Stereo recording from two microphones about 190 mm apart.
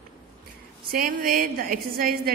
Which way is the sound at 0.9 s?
50° right (ahead or behind).